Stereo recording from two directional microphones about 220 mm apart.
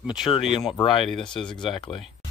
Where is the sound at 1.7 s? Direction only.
25° left (ahead or behind).